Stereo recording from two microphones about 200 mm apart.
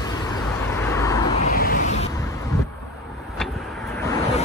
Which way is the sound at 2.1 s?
15° left (ahead or behind).